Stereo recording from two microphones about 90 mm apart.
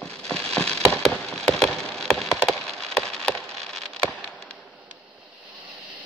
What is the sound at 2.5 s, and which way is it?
Rain on surface, 5° left (ahead or behind).